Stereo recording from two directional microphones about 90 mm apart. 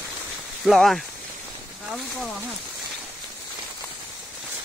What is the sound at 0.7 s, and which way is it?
Speech, centre (ahead or behind).